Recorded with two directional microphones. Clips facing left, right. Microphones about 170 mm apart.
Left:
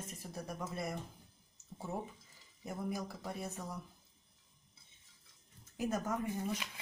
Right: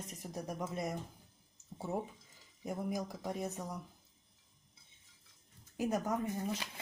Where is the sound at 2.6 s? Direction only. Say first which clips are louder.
Right 2 dB; 15° right (ahead or behind).